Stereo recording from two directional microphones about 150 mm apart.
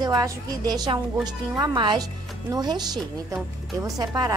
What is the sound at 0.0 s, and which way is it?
A woman's voice, 25° right (ahead or behind).